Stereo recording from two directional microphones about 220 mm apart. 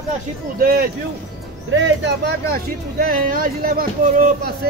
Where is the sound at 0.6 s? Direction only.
45° right (ahead or behind).